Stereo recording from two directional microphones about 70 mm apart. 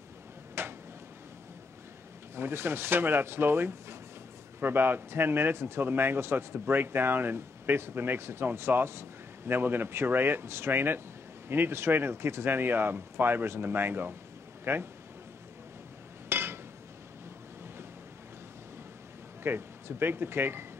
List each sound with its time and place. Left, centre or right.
0.6 s tick-tock: right
2.3 s speech: right
16.3 s hammer: right
19.4 s speech: right